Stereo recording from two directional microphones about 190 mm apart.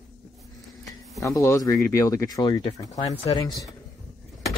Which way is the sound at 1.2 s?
15° left (ahead or behind).